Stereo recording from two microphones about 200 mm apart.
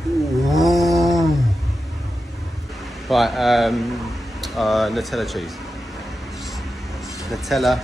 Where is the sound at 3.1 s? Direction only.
Centre (ahead or behind).